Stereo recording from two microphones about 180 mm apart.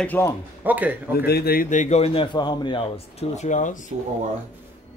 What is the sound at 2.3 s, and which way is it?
Speech, 25° left (ahead or behind).